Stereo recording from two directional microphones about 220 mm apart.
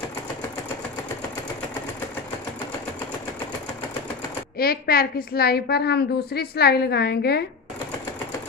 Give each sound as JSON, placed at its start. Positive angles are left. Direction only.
{"t": 4.6, "sound": "a woman's voice", "side_deg": 45}